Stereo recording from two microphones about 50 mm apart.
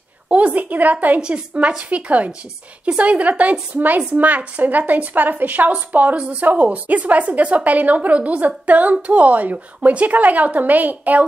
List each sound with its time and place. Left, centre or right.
0.3 s a woman's voice: right
1.2 s a woman's voice: right